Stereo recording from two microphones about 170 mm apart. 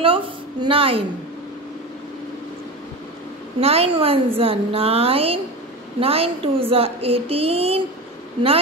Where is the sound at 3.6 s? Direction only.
35° right (ahead or behind).